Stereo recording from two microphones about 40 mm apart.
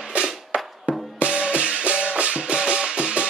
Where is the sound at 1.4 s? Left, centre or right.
Right.